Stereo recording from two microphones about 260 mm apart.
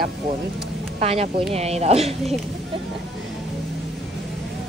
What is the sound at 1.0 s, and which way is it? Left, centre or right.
A woman's voice, right.